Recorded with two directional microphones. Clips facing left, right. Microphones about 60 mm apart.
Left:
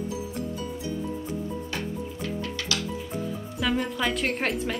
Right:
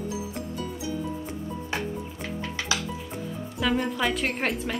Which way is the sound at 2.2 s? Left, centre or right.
Centre.